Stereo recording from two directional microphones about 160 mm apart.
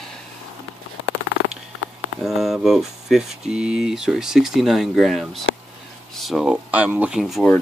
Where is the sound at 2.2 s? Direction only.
Centre (ahead or behind).